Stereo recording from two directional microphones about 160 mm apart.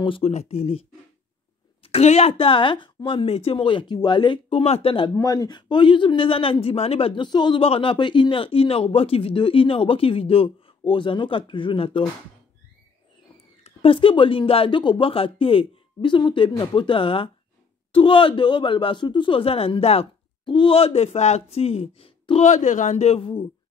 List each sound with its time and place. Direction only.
0.0 s a man's voice: 35° left (ahead or behind)
5.1 s a man's voice: 20° left (ahead or behind)
13.7 s a man's voice: 35° left (ahead or behind)